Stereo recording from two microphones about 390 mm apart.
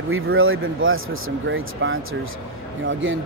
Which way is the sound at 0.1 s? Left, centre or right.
Right.